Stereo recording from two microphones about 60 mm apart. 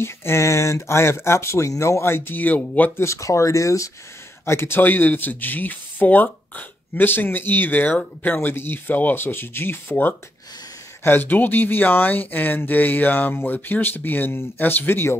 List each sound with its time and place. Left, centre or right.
0.0 s speech: left
3.0 s speech: left
4.5 s speech: left